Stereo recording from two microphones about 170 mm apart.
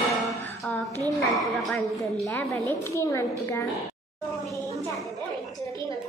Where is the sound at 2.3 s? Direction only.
10° left (ahead or behind).